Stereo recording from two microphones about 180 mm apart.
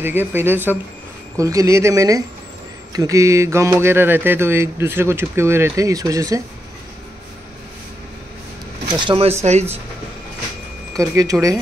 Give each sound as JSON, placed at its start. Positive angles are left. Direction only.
{"t": 0.0, "sound": "speech", "side_deg": -10}
{"t": 9.0, "sound": "speech", "side_deg": -30}
{"t": 11.0, "sound": "speech", "side_deg": -20}